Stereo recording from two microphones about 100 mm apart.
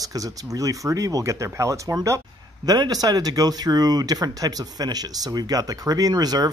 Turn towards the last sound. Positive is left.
turn(degrees=-40)  # may be behind; listen again after turning